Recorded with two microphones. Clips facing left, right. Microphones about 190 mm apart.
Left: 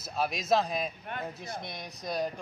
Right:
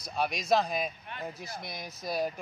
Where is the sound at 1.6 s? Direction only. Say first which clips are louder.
Even; 5° right (ahead or behind).